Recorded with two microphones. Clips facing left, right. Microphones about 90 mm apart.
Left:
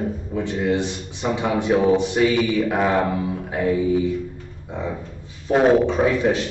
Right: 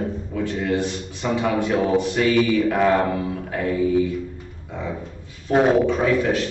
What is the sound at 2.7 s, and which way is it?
Speech, 15° left (ahead or behind).